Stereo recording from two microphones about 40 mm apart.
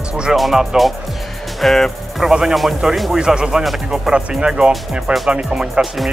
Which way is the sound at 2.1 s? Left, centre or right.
Centre.